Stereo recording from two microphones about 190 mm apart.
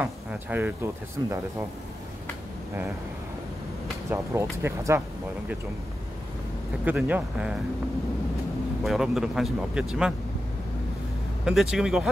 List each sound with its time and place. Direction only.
0.0 s a sound: 10° right (ahead or behind)
1.2 s speech: 20° right (ahead or behind)
4.1 s speech: 15° right (ahead or behind)
6.8 s speech: 10° right (ahead or behind)
8.8 s speech: centre (ahead or behind)
11.4 s speech: 5° right (ahead or behind)